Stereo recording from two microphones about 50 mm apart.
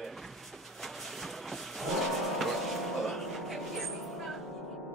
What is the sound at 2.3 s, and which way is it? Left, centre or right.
Music, centre.